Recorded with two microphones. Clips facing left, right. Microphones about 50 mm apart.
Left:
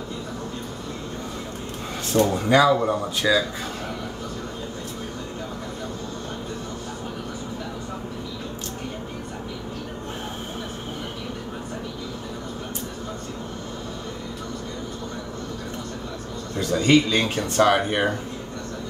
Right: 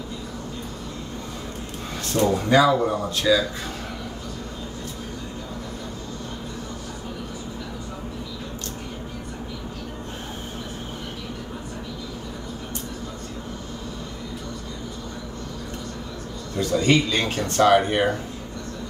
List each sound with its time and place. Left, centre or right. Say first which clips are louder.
2.1 s speech: even; centre
3.3 s speech: right 1 dB; left
16.7 s speech: left 2 dB; centre